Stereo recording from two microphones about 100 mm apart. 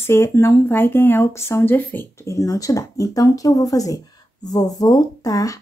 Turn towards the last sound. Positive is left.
turn(degrees=35)  # may be behind; listen again after turning